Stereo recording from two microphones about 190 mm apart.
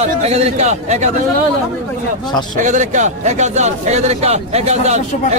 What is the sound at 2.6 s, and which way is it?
Speech, 40° right (ahead or behind).